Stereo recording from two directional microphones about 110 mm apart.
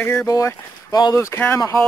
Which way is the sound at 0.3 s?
30° left (ahead or behind).